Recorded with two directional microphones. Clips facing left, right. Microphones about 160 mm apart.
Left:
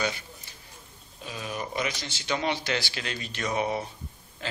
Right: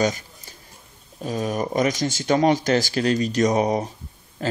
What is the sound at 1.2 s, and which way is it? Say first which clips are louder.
Speech: right 10 dB; 45° right (ahead or behind).